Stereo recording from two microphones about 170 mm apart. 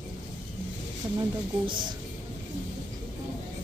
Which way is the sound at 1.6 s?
30° right (ahead or behind).